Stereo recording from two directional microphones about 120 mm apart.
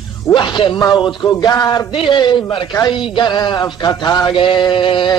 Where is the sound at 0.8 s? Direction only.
35° left (ahead or behind).